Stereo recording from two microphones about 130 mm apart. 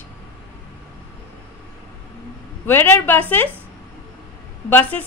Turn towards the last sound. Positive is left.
turn(degrees=15)  # may be behind; listen again after turning